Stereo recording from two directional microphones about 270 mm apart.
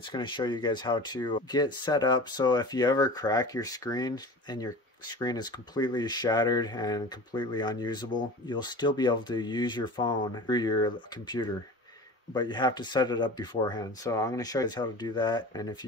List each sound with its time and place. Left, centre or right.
0.0 s speech: centre